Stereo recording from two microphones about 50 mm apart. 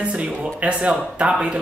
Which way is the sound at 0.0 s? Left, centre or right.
Right.